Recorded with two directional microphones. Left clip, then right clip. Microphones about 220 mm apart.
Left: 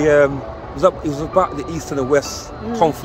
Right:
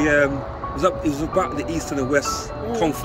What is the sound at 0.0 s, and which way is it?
Speech, 25° left (ahead or behind).